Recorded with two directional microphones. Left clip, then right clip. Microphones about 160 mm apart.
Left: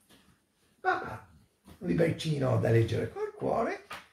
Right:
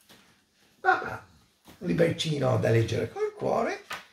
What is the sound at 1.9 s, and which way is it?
Speech, 15° right (ahead or behind).